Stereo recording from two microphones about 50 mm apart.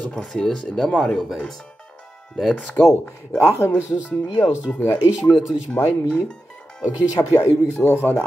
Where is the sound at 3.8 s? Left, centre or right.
Right.